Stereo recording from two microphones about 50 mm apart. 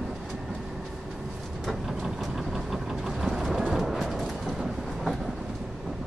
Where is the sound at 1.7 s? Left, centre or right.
Centre.